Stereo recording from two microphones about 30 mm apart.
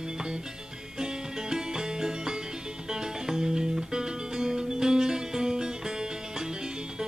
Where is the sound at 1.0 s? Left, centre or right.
Right.